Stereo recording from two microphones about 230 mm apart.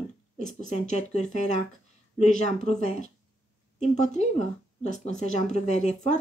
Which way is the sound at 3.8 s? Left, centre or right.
Left.